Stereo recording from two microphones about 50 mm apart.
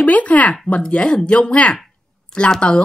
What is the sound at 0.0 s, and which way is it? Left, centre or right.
A woman's voice, left.